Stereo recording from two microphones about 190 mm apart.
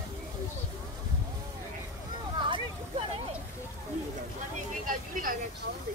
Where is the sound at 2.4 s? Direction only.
25° right (ahead or behind).